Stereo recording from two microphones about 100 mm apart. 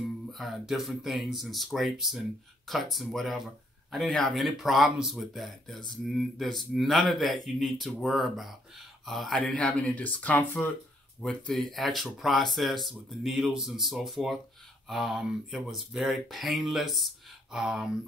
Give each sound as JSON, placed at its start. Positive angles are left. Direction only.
{"t": 0.3, "sound": "speech", "side_deg": 0}
{"t": 9.4, "sound": "speech", "side_deg": 10}
{"t": 11.2, "sound": "speech", "side_deg": 5}